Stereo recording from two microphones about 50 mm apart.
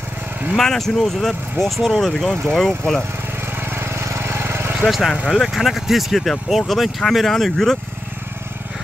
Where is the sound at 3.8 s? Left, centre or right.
Right.